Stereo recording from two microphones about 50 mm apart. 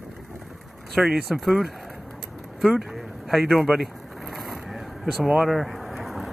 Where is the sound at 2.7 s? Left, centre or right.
Centre.